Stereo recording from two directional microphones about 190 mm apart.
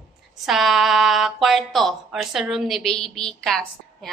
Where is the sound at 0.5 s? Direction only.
Centre (ahead or behind).